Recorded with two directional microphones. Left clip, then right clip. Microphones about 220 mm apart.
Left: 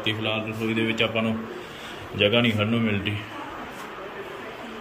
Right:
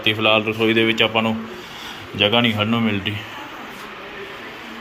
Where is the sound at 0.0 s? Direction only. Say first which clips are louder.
Right 10 dB; centre (ahead or behind).